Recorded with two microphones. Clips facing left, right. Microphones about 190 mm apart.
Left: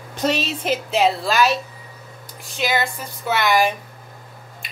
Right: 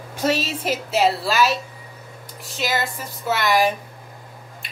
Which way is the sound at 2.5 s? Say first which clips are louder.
Left 2 dB; centre (ahead or behind).